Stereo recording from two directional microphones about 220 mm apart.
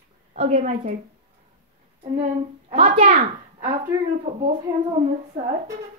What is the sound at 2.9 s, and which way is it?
A child's voice, 40° right (ahead or behind).